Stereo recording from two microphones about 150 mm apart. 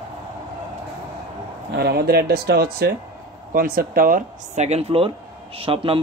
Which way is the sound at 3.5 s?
75° right (ahead or behind).